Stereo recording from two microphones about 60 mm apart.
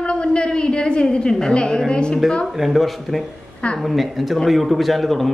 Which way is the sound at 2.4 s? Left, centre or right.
Centre.